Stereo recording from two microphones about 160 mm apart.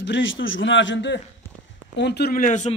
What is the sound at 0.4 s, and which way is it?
Speech, 90° left.